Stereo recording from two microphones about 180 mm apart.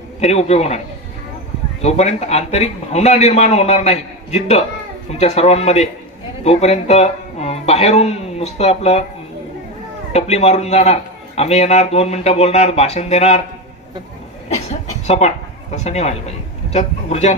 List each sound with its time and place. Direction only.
0.2 s a man's voice: 35° left (ahead or behind)
1.8 s a man's voice: 40° left (ahead or behind)
10.1 s a man's voice: 35° left (ahead or behind)
14.7 s speech: 35° left (ahead or behind)